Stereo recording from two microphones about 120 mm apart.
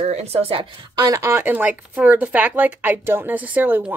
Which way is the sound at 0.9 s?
30° right (ahead or behind).